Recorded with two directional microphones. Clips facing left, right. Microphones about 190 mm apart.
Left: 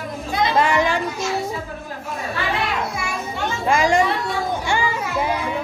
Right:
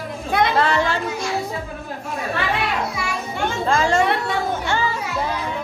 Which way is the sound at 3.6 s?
15° left (ahead or behind).